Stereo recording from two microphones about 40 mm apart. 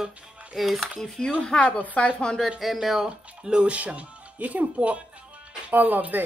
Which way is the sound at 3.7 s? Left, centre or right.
Right.